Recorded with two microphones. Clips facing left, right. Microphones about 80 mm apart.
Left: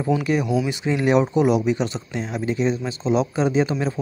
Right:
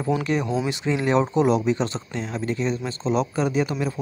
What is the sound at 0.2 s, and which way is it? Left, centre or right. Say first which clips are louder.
Speech: left 2 dB; centre.